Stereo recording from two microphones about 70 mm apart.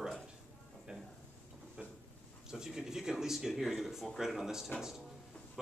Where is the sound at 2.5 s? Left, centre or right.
Centre.